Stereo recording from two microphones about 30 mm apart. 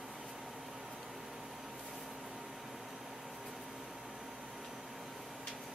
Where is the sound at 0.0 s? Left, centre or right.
Centre.